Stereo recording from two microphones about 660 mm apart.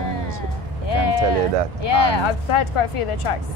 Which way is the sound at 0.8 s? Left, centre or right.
Left.